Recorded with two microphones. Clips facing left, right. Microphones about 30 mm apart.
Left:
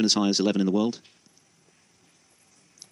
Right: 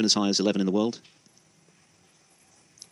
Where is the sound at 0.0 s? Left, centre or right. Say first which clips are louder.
Left 1 dB; centre.